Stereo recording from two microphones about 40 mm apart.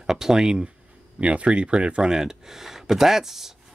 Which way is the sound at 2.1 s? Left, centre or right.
Centre.